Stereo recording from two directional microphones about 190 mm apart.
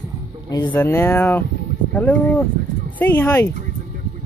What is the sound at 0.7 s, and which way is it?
Speech, 10° left (ahead or behind).